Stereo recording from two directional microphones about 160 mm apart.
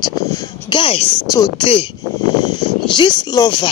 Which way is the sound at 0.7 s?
35° left (ahead or behind).